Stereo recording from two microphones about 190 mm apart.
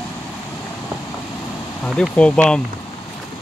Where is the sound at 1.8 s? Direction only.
5° left (ahead or behind).